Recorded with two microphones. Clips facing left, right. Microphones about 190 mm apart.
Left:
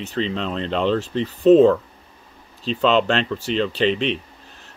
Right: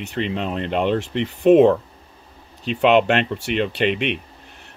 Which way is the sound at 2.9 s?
60° right (ahead or behind).